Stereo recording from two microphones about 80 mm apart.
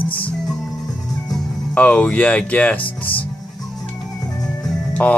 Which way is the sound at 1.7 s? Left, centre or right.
Centre.